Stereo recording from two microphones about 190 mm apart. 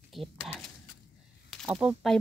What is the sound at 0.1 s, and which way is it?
Speech, centre (ahead or behind).